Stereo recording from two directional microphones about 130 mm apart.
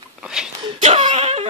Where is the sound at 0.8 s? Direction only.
55° right (ahead or behind).